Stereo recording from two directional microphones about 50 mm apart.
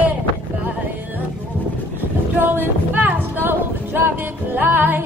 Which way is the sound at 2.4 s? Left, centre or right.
Right.